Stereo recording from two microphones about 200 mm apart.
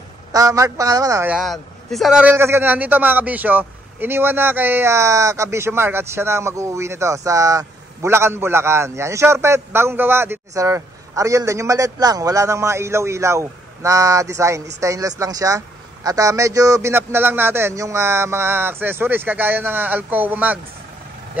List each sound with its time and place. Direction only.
0.3 s a man's voice: 15° right (ahead or behind)
1.3 s a man's voice: centre (ahead or behind)